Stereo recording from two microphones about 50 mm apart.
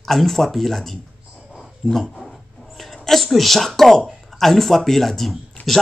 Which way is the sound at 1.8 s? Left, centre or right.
Centre.